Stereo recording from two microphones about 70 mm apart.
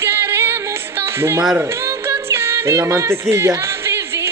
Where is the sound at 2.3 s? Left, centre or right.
Right.